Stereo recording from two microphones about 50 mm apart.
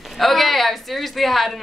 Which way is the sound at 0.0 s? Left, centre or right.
Centre.